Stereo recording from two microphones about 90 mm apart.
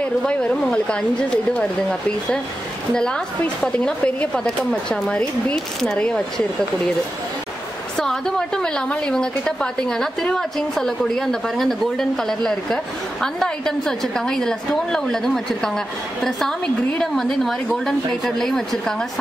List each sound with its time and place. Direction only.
0.3 s speech: 10° left (ahead or behind)
8.0 s a woman's voice: 5° left (ahead or behind)